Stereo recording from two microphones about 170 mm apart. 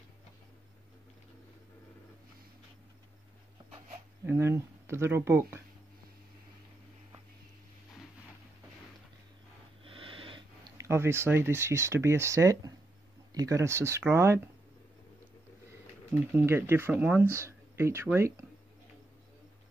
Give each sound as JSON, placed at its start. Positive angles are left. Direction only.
{"t": 4.3, "sound": "speech", "side_deg": -15}
{"t": 9.8, "sound": "speech", "side_deg": -30}
{"t": 16.3, "sound": "speech", "side_deg": -10}